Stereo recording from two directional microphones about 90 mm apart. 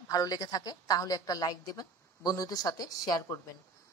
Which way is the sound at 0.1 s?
45° left (ahead or behind).